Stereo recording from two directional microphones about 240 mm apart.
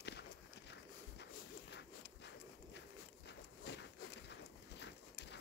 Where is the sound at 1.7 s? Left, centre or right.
Left.